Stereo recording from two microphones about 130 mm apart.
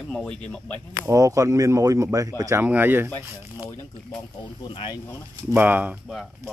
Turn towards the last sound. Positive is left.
turn(degrees=-15)  # may be behind; listen again after turning